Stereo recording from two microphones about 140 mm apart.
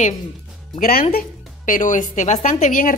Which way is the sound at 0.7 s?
90° left.